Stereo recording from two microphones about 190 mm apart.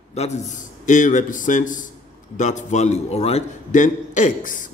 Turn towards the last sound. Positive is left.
turn(degrees=45)  # may be behind; listen again after turning